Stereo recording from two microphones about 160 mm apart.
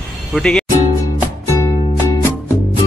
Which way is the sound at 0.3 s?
5° left (ahead or behind).